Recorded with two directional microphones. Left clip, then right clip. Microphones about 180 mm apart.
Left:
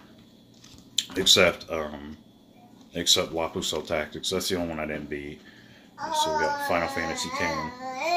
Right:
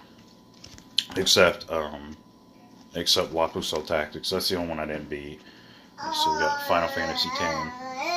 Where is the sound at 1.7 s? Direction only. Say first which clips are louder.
Right 2 dB; 15° left (ahead or behind).